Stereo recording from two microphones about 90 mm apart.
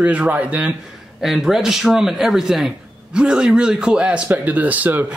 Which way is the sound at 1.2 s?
5° right (ahead or behind).